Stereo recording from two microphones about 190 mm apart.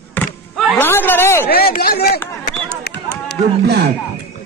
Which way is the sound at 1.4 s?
50° left (ahead or behind).